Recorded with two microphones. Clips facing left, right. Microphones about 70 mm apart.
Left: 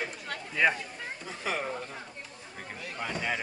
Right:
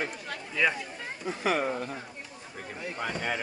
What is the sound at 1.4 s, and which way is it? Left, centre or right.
Speech, right.